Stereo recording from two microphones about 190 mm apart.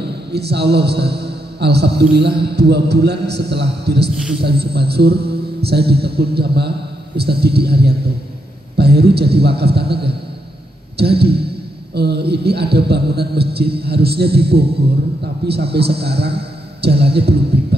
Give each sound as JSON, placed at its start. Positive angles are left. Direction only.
{"t": 0.0, "sound": "a man's voice", "side_deg": -60}